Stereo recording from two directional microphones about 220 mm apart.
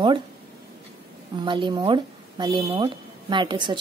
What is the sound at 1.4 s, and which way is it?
A woman's voice, 20° right (ahead or behind).